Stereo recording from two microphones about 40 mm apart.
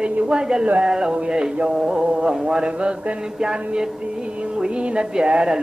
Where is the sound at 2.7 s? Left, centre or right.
Right.